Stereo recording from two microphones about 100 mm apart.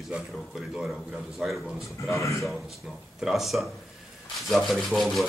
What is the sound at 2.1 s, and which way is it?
Speech, 30° left (ahead or behind).